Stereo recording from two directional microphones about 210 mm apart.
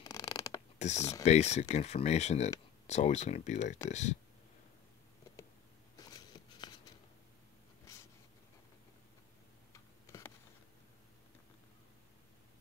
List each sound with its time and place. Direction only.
0.0 s a sound: 15° left (ahead or behind)
0.7 s speech: 30° left (ahead or behind)
7.9 s writing: 15° left (ahead or behind)
9.7 s computer keyboard: 15° left (ahead or behind)